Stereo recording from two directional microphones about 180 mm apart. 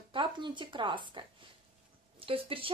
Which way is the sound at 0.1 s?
25° right (ahead or behind).